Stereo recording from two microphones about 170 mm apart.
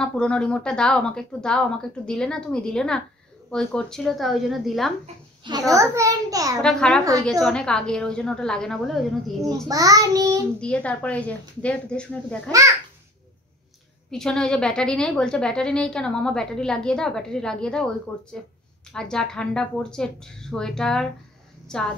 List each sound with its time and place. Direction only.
0.0 s a woman's voice: 5° left (ahead or behind)
5.7 s a child's voice: 20° right (ahead or behind)
6.6 s a woman's voice: 5° left (ahead or behind)
9.5 s a child's voice: 20° right (ahead or behind)
10.6 s speech: 5° left (ahead or behind)
12.4 s a child's voice: 20° right (ahead or behind)
14.1 s a woman's voice: 5° left (ahead or behind)